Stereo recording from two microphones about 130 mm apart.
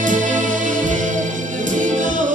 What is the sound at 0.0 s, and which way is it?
Music, 80° right.